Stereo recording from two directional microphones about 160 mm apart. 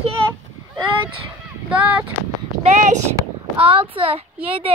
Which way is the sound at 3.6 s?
35° right (ahead or behind).